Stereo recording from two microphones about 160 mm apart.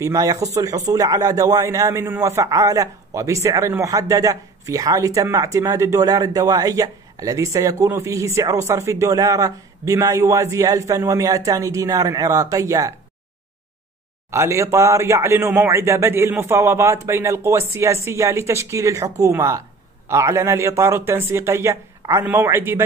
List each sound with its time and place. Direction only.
0.0 s a man's voice: 20° right (ahead or behind)
14.3 s a man's voice: 20° right (ahead or behind)